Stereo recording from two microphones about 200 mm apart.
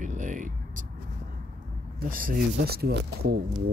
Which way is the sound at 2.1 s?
45° right (ahead or behind).